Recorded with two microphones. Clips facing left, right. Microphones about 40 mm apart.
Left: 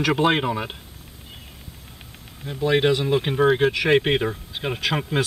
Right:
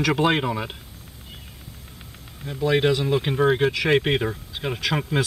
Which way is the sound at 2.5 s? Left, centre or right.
Centre.